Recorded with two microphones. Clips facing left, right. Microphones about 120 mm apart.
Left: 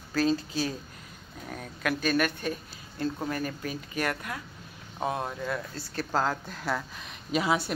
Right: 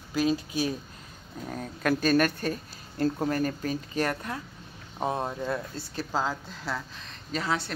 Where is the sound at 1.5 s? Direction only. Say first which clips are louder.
Right 4 dB; 30° right (ahead or behind).